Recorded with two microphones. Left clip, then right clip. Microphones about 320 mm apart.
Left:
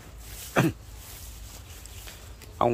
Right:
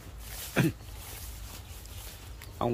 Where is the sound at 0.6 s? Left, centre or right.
Centre.